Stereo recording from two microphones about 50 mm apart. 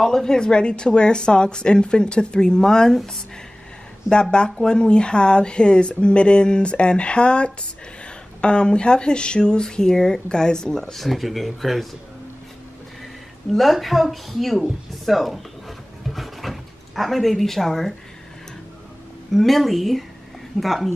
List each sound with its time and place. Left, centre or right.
0.0 s speech: centre
4.1 s speech: centre
13.5 s a woman's voice: centre
16.1 s drawer open or close: centre
19.3 s a woman's voice: centre